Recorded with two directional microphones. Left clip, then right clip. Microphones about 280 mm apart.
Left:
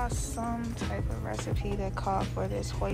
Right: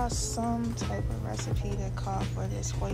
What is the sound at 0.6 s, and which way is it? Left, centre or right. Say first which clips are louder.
Speech: right 1 dB; centre.